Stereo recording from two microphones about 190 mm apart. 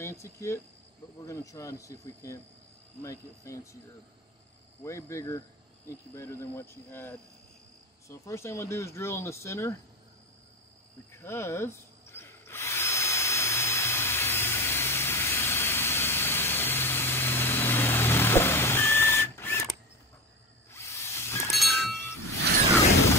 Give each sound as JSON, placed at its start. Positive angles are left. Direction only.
{"t": 0.0, "sound": "speech", "side_deg": 15}
{"t": 4.8, "sound": "speech", "side_deg": 15}
{"t": 11.1, "sound": "tools", "side_deg": 15}
{"t": 20.7, "sound": "a sound", "side_deg": 15}
{"t": 21.5, "sound": "wind chime", "side_deg": 0}
{"t": 21.9, "sound": "a sound", "side_deg": 15}